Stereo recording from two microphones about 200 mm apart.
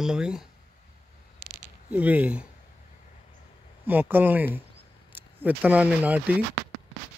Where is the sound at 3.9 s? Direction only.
10° right (ahead or behind).